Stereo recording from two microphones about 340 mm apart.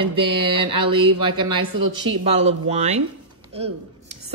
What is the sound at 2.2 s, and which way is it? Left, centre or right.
Speech, centre.